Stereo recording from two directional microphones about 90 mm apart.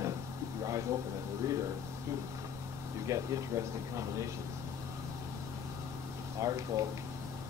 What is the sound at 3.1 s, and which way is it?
Speech, 35° right (ahead or behind).